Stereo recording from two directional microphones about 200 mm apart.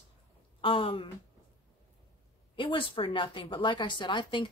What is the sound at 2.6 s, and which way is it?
Speech, 25° left (ahead or behind).